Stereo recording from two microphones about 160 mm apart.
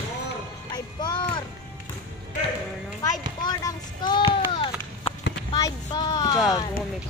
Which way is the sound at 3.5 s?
25° left (ahead or behind).